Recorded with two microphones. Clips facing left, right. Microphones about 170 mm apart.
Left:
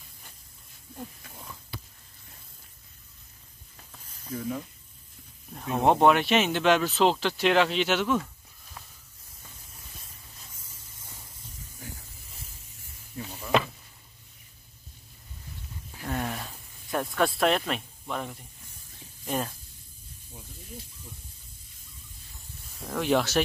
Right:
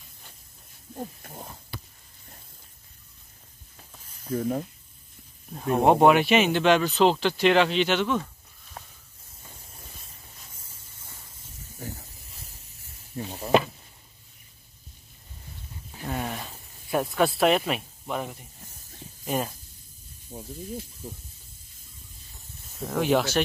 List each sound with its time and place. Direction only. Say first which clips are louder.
0.9 s pig: right 5 dB; 45° right (ahead or behind)
4.3 s pig: right 6 dB; 50° right (ahead or behind)
5.9 s speech: right 2 dB; 5° right (ahead or behind)
8.8 s snake: right 4 dB; 45° right (ahead or behind)
10.5 s spray: even; 30° right (ahead or behind)
13.1 s a sound: right 5 dB; 35° right (ahead or behind)
16.1 s a sound: even; 5° right (ahead or behind)
17.4 s speech: right 3 dB; 5° right (ahead or behind)
20.3 s pig: right 10 dB; 45° right (ahead or behind)
22.8 s speech: right 2 dB; centre (ahead or behind)